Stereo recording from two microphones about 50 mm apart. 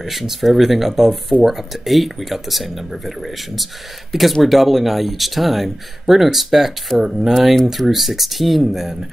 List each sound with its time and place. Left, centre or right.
0.0 s speech: centre